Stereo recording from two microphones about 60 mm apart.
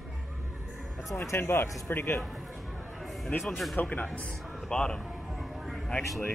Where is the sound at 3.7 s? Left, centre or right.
Left.